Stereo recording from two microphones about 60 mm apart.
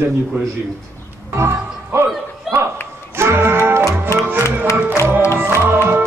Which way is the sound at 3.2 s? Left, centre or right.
Right.